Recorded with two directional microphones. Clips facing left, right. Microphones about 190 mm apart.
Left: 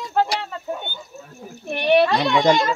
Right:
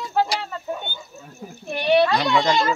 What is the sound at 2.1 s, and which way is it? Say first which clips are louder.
Speech: left 3 dB; 20° left (ahead or behind).